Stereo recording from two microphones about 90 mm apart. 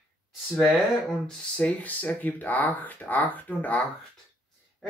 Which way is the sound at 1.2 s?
15° left (ahead or behind).